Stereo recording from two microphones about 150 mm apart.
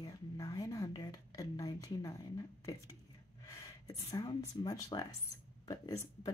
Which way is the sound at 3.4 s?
20° left (ahead or behind).